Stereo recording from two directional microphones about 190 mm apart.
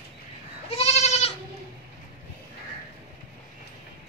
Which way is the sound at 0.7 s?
35° left (ahead or behind).